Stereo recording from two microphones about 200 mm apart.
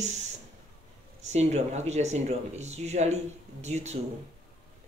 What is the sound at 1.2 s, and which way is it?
Speech, 35° right (ahead or behind).